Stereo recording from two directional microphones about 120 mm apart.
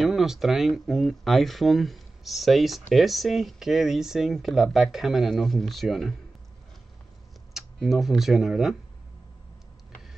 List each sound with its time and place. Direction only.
0.0 s speech: centre (ahead or behind)
7.5 s speech: centre (ahead or behind)